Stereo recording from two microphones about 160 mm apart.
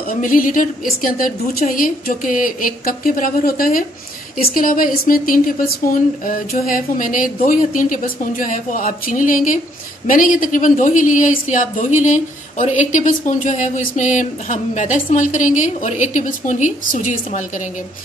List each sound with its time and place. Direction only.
0.1 s speech: 60° left (ahead or behind)